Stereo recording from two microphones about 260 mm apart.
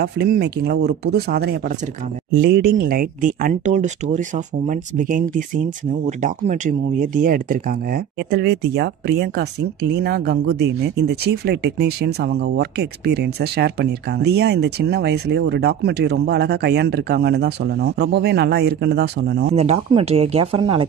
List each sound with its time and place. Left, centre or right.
0.0 s speech: right
19.5 s speech: right